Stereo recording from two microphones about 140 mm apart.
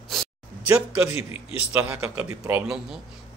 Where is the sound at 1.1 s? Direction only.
45° left (ahead or behind).